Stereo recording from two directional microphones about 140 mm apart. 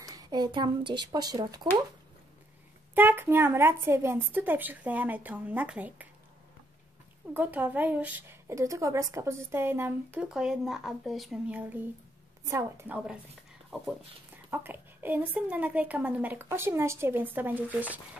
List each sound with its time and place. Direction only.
0.0 s speech: 30° right (ahead or behind)
2.9 s a woman's voice: 15° right (ahead or behind)
7.3 s a woman's voice: 15° right (ahead or behind)
14.5 s a woman's voice: 15° right (ahead or behind)